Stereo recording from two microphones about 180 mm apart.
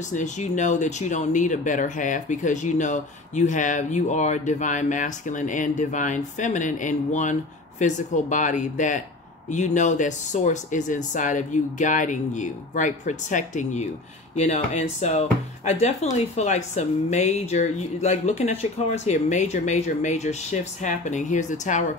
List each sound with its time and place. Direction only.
0.1 s speech: 40° left (ahead or behind)